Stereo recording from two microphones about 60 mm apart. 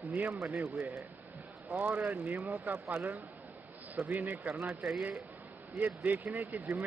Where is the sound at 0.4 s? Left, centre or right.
Right.